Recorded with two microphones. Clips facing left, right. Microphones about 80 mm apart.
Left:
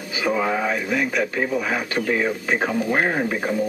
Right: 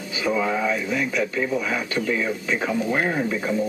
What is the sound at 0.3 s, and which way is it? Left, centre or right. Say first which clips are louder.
Speech: left 1 dB; left.